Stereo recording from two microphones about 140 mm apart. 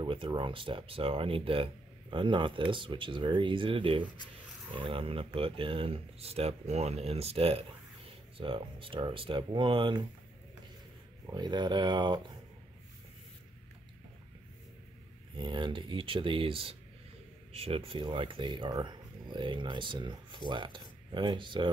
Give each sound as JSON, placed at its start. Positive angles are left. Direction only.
{"t": 0.0, "sound": "speech", "side_deg": -35}
{"t": 11.2, "sound": "speech", "side_deg": -30}
{"t": 15.3, "sound": "speech", "side_deg": -35}